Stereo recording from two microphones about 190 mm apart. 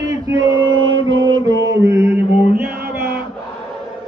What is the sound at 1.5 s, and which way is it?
Mantra, 75° right (ahead or behind).